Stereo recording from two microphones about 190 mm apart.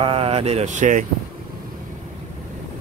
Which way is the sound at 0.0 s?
30° right (ahead or behind).